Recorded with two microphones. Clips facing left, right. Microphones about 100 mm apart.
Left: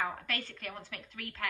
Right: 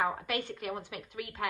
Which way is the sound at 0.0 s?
15° right (ahead or behind).